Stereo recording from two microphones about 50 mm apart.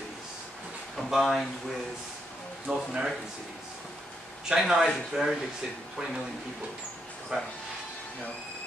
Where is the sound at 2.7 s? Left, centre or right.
Centre.